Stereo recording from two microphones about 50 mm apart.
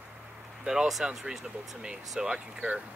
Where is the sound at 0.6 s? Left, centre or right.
Centre.